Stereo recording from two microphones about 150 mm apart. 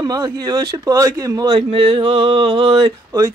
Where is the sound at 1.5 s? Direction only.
35° right (ahead or behind).